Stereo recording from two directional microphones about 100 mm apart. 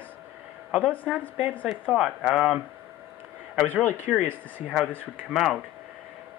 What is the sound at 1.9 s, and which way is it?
Speech, 5° right (ahead or behind).